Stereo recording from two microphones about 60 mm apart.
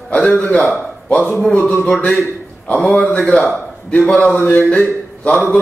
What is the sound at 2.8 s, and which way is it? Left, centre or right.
A man's voice, left.